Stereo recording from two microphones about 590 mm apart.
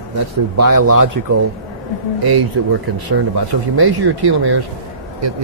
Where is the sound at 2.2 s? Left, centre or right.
Right.